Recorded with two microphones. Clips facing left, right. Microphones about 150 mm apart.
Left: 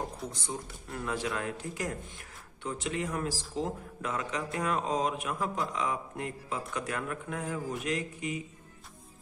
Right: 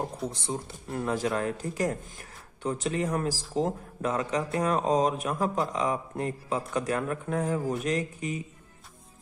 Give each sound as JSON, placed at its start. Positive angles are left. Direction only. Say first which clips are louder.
{"t": 0.3, "sound": "speech", "louder": "right 4 dB", "side_deg": -30}